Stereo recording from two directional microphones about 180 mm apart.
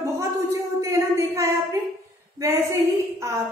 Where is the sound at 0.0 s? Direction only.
15° right (ahead or behind).